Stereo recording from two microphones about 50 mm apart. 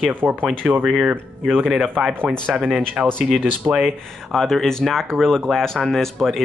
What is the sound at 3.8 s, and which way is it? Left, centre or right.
Speech, centre.